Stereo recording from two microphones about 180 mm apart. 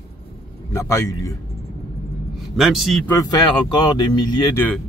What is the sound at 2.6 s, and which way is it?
Speech, centre (ahead or behind).